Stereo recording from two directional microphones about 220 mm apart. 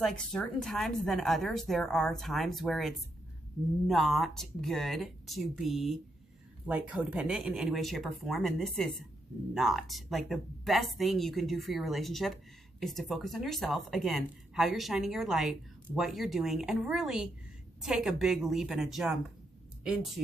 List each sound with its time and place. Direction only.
0.0 s speech: 5° left (ahead or behind)